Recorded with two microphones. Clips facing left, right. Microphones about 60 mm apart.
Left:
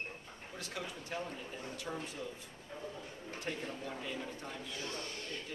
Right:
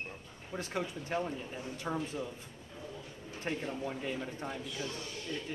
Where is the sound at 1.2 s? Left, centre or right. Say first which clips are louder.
Right 4 dB; centre.